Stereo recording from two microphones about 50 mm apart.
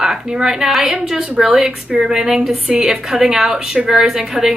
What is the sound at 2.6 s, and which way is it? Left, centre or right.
Speech, right.